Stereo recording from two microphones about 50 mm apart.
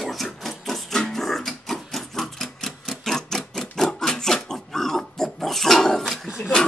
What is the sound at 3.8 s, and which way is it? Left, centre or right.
Pig, centre.